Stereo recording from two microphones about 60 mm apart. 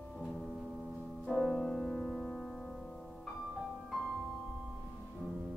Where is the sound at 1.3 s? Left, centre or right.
Centre.